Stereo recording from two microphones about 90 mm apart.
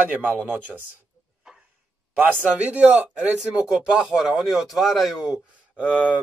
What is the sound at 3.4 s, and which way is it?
A man's voice, 10° right (ahead or behind).